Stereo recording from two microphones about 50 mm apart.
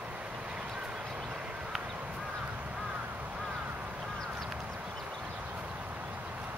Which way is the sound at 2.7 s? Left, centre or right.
Centre.